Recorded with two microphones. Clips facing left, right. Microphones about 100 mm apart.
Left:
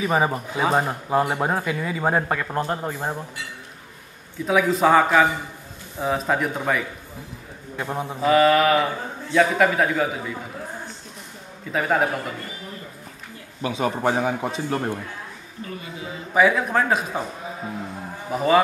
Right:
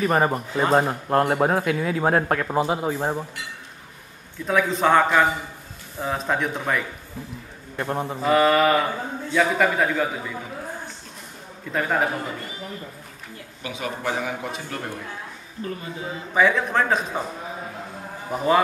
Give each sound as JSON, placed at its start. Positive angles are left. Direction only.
{"t": 0.0, "sound": "speech", "side_deg": 5}
{"t": 4.5, "sound": "speech", "side_deg": 5}
{"t": 11.7, "sound": "speech", "side_deg": 0}
{"t": 13.6, "sound": "a man's voice", "side_deg": 35}
{"t": 16.3, "sound": "speech", "side_deg": 5}
{"t": 18.3, "sound": "speech", "side_deg": 0}